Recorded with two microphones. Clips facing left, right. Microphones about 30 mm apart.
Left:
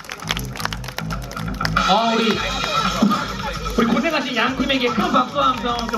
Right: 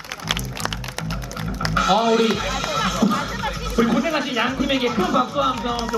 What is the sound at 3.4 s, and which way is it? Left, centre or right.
Speech, centre.